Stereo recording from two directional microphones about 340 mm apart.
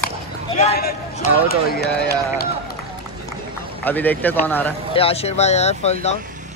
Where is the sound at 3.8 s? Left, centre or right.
Centre.